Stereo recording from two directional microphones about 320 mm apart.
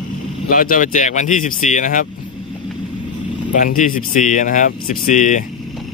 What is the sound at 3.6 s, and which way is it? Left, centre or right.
Speech, left.